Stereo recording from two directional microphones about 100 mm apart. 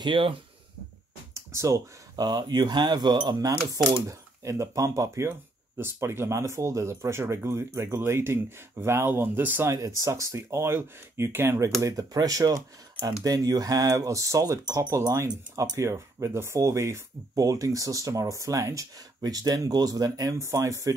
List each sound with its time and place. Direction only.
0.0 s speech: 60° right (ahead or behind)
1.3 s a sound: 30° right (ahead or behind)
2.1 s speech: 45° right (ahead or behind); by 9.8 s 20° right (ahead or behind)
9.8 s speech: 30° right (ahead or behind)